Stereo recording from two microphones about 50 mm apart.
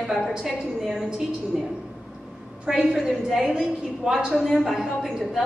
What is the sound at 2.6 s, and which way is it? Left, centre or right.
A woman's voice, centre.